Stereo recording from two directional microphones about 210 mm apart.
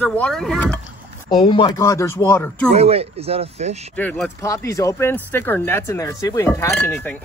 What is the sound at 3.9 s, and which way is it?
Speech, 5° left (ahead or behind).